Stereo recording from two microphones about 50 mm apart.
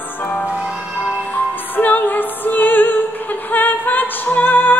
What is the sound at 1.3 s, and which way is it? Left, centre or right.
Music, left.